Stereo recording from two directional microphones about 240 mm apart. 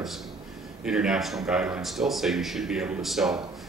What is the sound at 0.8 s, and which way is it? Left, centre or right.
Speech, centre.